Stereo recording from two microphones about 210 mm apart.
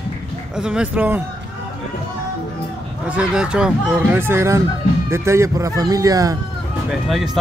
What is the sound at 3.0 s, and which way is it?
Speech, 5° right (ahead or behind).